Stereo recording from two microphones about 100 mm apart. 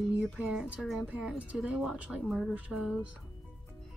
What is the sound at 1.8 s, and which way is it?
Speech, 5° right (ahead or behind).